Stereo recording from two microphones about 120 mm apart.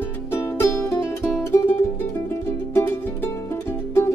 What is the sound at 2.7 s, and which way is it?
Music, 20° left (ahead or behind).